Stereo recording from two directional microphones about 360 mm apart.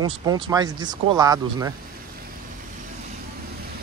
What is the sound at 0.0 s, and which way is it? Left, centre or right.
Speech, centre.